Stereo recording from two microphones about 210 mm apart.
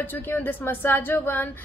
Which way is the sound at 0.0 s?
10° left (ahead or behind).